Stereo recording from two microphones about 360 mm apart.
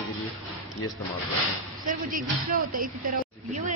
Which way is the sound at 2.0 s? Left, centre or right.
Right.